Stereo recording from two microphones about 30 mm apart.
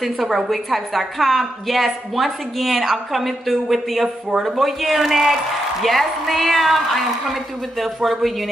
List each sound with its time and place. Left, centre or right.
0.0 s a woman's voice: centre